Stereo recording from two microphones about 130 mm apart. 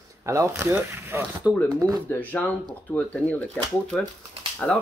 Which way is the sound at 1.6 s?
30° right (ahead or behind).